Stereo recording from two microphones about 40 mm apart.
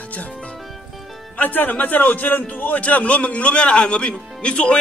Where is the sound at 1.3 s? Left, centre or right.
Left.